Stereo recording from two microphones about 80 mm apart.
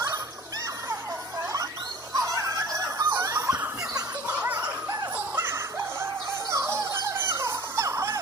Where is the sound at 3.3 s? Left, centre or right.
Right.